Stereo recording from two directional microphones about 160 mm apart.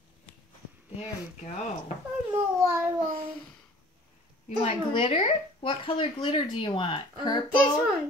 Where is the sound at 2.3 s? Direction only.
15° right (ahead or behind).